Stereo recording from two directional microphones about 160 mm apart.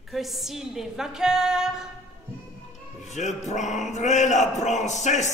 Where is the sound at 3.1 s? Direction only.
50° left (ahead or behind).